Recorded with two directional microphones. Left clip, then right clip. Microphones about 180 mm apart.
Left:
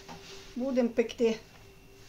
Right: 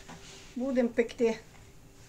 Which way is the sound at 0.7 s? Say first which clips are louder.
Even; 15° left (ahead or behind).